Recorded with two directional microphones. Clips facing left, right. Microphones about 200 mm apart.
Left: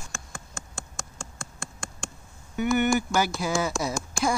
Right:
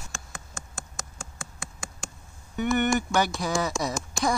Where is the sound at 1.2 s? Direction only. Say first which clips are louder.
Left 2 dB; centre (ahead or behind).